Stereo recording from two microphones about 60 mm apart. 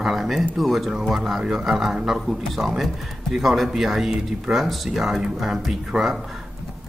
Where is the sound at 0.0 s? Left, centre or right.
Centre.